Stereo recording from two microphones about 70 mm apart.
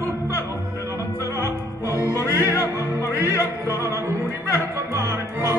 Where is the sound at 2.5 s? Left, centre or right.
Left.